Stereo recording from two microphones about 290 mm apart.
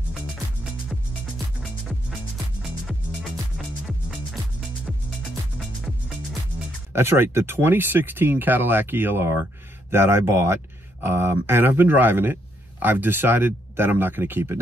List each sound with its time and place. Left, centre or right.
6.9 s speech: centre